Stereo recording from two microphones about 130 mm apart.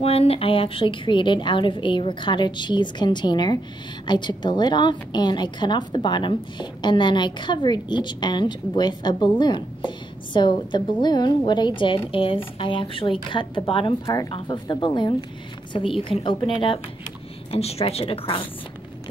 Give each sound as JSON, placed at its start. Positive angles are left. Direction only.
{"t": 0.0, "sound": "a woman's voice", "side_deg": 50}
{"t": 17.5, "sound": "a woman's voice", "side_deg": 50}